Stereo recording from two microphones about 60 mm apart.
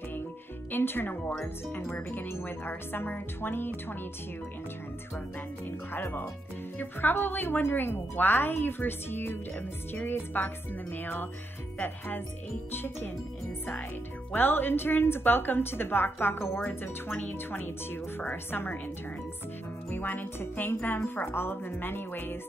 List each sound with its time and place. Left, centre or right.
0.7 s speech: left
5.7 s music: left
6.8 s speech: left
12.7 s speech: left
14.3 s speech: left
19.9 s speech: left